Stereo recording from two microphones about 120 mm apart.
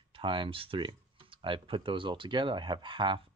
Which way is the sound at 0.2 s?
45° right (ahead or behind).